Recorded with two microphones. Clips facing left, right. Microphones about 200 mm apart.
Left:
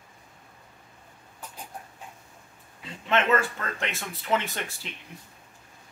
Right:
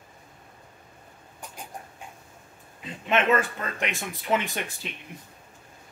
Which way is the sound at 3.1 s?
15° right (ahead or behind).